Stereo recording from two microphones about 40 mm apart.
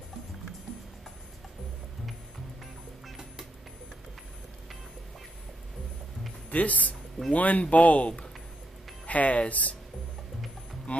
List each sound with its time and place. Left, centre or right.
6.5 s speech: left
10.9 s music: left